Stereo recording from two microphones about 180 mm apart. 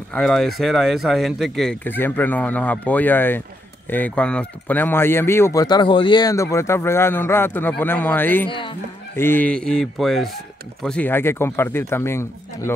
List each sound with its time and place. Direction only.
0.1 s speech: centre (ahead or behind)
8.5 s speech: 30° left (ahead or behind)
9.1 s speech: 10° left (ahead or behind)